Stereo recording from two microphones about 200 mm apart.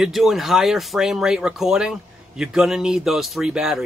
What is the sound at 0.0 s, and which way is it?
Speech, centre (ahead or behind).